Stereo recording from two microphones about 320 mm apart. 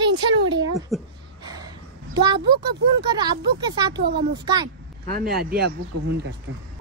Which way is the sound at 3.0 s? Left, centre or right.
Centre.